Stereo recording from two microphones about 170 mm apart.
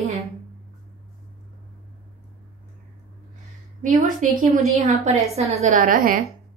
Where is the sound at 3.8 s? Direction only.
50° right (ahead or behind).